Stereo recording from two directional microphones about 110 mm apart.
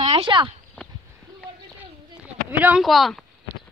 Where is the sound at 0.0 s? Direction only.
50° right (ahead or behind).